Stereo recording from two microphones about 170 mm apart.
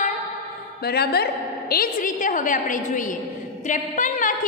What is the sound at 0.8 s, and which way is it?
A woman's voice, 70° left (ahead or behind).